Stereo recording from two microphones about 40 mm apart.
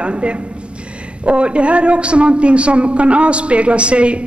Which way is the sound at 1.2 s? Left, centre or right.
Right.